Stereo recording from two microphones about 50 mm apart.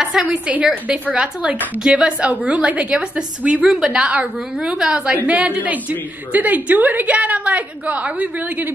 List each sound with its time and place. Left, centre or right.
0.0 s a woman's voice: centre
0.5 s a woman's voice: right